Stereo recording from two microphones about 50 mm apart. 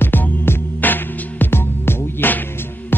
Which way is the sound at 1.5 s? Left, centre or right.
Left.